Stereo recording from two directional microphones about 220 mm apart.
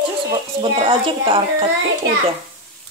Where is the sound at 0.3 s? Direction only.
20° right (ahead or behind).